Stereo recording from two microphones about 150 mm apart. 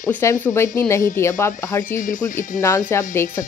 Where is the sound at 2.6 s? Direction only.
20° left (ahead or behind).